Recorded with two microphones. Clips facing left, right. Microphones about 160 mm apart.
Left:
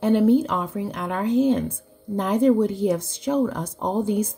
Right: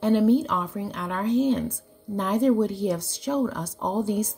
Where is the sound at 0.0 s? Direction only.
15° left (ahead or behind).